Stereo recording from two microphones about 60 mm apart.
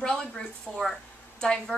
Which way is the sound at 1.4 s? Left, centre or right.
Centre.